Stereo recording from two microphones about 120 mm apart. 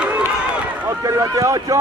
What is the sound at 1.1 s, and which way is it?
Speech, 25° right (ahead or behind).